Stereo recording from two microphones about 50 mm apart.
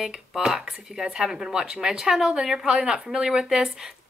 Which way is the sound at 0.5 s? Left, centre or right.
Centre.